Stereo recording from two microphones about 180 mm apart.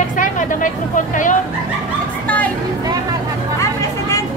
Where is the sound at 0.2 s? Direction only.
45° left (ahead or behind).